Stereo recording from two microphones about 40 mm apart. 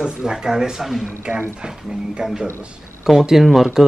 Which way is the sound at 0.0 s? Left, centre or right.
Centre.